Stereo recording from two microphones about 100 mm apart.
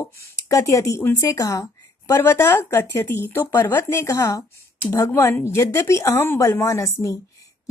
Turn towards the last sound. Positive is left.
turn(degrees=30)  # may be behind; listen again after turning